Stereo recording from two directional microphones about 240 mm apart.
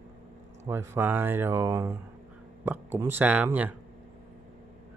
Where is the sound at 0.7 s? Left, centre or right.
Centre.